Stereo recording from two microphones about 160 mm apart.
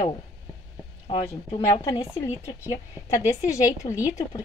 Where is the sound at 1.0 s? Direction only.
40° left (ahead or behind).